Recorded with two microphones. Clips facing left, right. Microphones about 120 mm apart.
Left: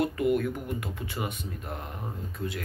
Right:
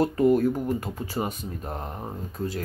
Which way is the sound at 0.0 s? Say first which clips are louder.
Right 5 dB; 35° right (ahead or behind).